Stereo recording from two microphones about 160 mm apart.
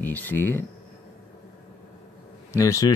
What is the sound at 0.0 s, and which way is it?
Speech, 10° left (ahead or behind).